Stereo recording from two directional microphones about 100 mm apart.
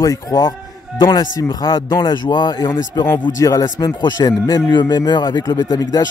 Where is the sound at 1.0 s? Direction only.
50° left (ahead or behind).